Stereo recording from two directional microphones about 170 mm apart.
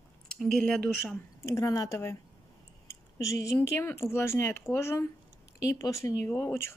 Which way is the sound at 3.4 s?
15° left (ahead or behind).